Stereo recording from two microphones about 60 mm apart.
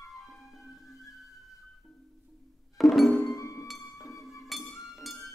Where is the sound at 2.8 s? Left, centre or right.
Centre.